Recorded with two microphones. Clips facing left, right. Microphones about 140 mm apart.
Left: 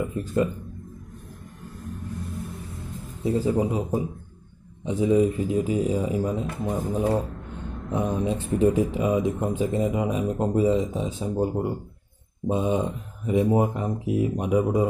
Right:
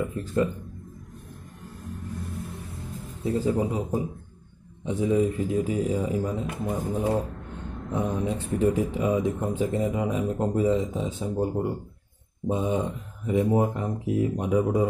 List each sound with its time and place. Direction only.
0.0 s speech: 15° left (ahead or behind)
3.3 s speech: 15° left (ahead or behind)